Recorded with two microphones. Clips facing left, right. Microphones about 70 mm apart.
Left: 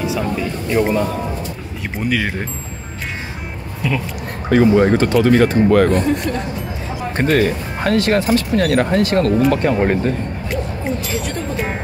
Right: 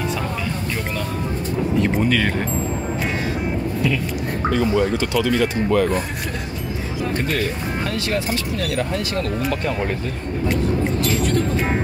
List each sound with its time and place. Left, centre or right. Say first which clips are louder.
1.8 s speech: even; centre
4.5 s speech: left 7 dB; left
7.2 s speech: left 11 dB; left
10.5 s speech: right 1 dB; centre